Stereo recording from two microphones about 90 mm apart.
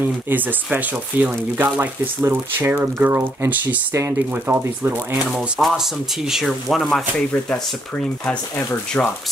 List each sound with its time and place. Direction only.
0.0 s speech: 20° right (ahead or behind)
5.3 s speech: 5° right (ahead or behind)
8.3 s speech: 15° left (ahead or behind)